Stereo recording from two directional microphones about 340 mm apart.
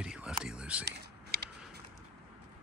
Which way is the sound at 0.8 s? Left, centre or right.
Right.